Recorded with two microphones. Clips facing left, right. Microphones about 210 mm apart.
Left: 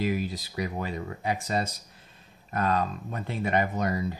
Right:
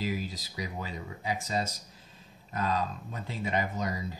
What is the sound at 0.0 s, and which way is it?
Speech, 60° left (ahead or behind).